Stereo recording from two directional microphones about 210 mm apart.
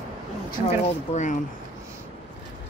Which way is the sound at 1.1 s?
35° left (ahead or behind).